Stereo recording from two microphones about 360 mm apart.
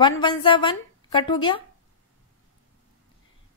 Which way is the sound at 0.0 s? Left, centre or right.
Centre.